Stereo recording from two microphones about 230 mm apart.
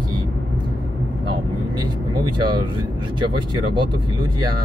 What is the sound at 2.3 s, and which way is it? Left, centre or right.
Speech, centre.